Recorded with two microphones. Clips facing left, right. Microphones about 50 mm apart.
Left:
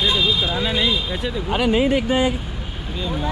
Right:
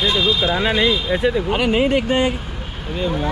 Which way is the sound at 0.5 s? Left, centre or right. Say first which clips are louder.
Right 4 dB; right.